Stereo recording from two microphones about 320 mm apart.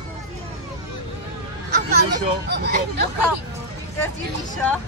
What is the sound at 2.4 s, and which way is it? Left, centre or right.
Speech, right.